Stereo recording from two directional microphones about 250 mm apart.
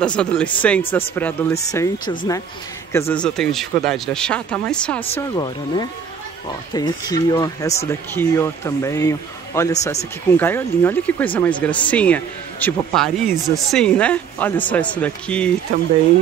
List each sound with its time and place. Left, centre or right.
0.0 s speech: centre